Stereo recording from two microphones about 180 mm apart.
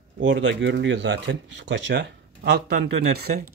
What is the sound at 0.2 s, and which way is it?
Speech, 90° right.